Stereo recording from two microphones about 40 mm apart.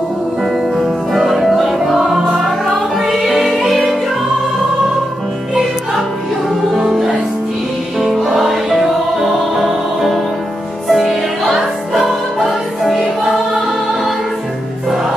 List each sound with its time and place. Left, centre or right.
0.7 s music: centre
2.0 s music: centre
3.0 s music: centre
6.8 s music: centre